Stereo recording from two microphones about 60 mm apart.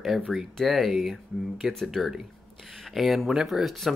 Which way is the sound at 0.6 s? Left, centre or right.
Centre.